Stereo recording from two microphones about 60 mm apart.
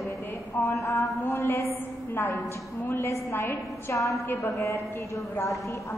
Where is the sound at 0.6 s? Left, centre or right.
Left.